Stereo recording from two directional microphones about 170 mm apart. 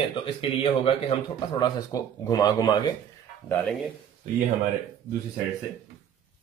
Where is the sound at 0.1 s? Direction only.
30° left (ahead or behind).